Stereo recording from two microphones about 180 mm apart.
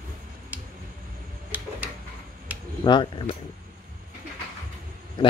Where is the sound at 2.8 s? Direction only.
25° left (ahead or behind).